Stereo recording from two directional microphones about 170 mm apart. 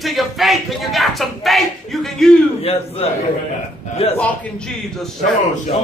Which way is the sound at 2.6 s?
35° left (ahead or behind).